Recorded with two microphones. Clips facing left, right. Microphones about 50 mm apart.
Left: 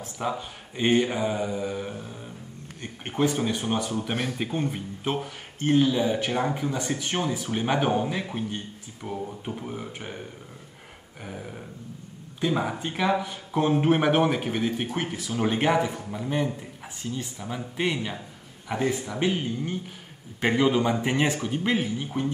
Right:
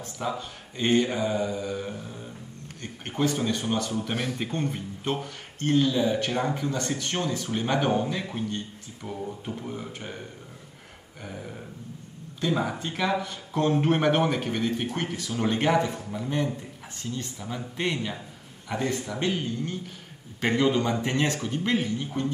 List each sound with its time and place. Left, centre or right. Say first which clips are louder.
0.0 s speech: left 1 dB; centre
4.4 s speech: left 1 dB; centre
11.2 s speech: left 1 dB; centre